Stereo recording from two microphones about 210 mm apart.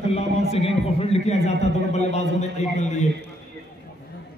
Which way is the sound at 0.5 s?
30° left (ahead or behind).